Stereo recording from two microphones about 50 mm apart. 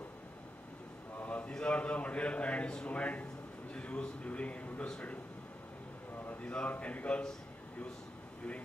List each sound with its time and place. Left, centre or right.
1.1 s a sound: left
1.5 s a man's voice: left
6.4 s a man's voice: left